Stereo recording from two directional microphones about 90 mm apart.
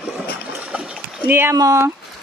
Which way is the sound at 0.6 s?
10° right (ahead or behind).